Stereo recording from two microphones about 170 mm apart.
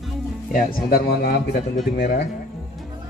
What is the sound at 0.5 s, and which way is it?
Speech, 70° left (ahead or behind).